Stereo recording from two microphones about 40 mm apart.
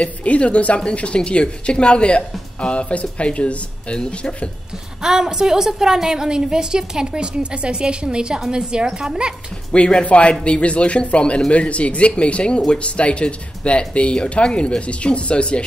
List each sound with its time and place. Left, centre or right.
0.0 s a woman's voice: left
5.0 s a woman's voice: centre
9.7 s a woman's voice: left